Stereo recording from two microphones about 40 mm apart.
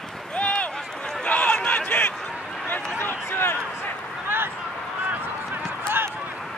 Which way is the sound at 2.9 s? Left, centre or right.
Left.